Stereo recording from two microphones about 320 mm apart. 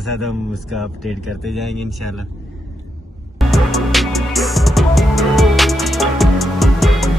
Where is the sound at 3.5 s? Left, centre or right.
Centre.